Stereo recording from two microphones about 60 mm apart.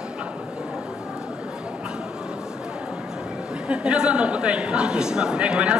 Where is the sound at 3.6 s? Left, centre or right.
Centre.